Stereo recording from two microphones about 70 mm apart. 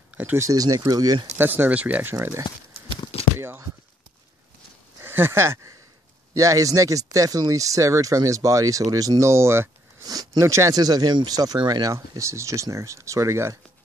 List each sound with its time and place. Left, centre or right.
0.1 s a sound: right
0.4 s speech: right
1.4 s speech: right
3.3 s a sound: right
5.0 s speech: right
6.3 s speech: right
9.3 s speech: right
10.0 s speech: right
10.4 s speech: right
10.7 s speech: right
12.2 s speech: right